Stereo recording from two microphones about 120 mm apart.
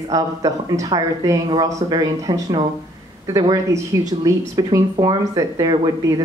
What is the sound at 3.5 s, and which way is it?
A woman's voice, 25° right (ahead or behind).